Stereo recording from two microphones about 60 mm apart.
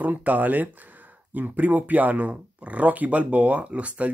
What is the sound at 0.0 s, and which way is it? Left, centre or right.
Speech, right.